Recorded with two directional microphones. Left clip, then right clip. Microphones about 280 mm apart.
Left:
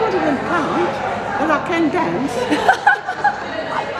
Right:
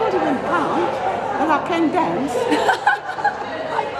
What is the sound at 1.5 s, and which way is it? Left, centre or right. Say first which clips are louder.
Speech: left 1 dB; centre.